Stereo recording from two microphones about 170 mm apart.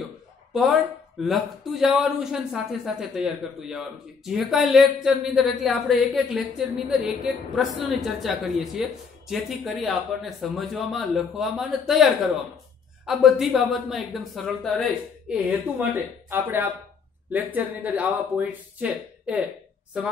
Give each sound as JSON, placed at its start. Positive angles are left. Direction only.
{"t": 0.5, "sound": "a man's voice", "side_deg": 0}